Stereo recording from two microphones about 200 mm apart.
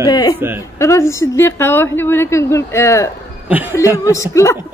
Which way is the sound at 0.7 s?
15° left (ahead or behind).